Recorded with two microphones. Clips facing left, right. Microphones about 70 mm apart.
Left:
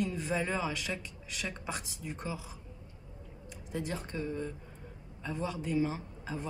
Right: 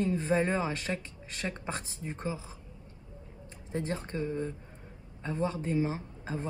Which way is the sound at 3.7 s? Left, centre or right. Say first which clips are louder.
Right 3 dB; right.